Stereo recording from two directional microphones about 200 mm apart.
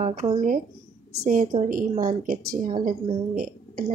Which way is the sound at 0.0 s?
35° right (ahead or behind).